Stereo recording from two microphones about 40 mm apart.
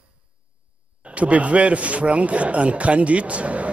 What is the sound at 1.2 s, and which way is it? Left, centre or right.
A man's voice, right.